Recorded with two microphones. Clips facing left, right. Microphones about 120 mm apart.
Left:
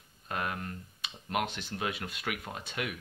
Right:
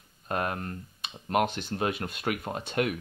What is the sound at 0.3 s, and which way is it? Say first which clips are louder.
Speech: right 5 dB; 40° right (ahead or behind).